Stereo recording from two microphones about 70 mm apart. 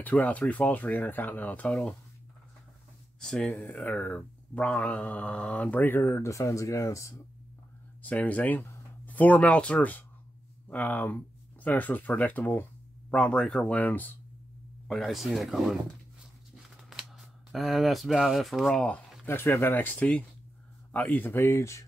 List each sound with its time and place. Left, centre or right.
0.0 s speech: left
1.7 s speech: centre
3.2 s speech: centre; by 7.2 s left
8.0 s speech: left
14.9 s speech: centre
17.5 s speech: centre
18.7 s speech: centre
19.2 s speech: left